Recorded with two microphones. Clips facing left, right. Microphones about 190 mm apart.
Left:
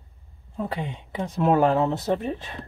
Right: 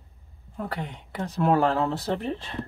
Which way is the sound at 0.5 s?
20° left (ahead or behind).